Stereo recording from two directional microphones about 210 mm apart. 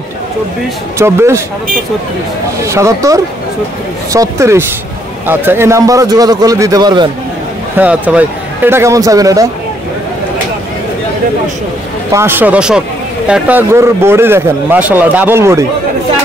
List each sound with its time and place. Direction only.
0.9 s a man's voice: 15° right (ahead or behind)
2.6 s a man's voice: 15° right (ahead or behind)
7.7 s a man's voice: 5° right (ahead or behind)
12.1 s a man's voice: 10° right (ahead or behind)